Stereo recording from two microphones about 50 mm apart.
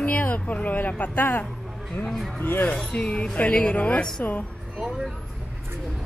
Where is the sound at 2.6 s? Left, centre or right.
Left.